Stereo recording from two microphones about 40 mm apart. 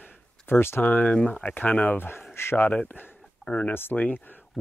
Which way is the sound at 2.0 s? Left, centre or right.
Left.